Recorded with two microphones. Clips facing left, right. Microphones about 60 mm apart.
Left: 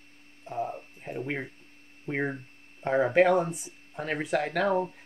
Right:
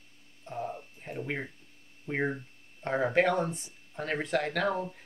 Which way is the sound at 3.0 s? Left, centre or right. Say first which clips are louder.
Left 3 dB; centre.